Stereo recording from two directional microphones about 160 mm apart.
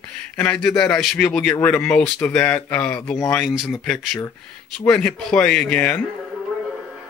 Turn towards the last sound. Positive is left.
turn(degrees=-5)  # may be behind; listen again after turning